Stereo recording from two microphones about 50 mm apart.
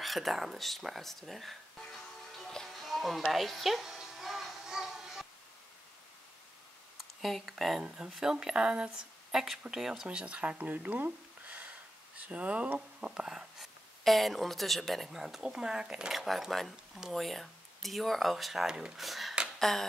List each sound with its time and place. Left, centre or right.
0.0 s speech: centre
2.3 s music: centre
7.0 s speech: centre
7.8 s speech: centre
9.3 s speech: centre
10.0 s speech: right
10.6 s a sound: right
12.2 s speech: right
13.1 s speech: centre
13.6 s speech: centre
15.0 s speech: centre
16.1 s speech: centre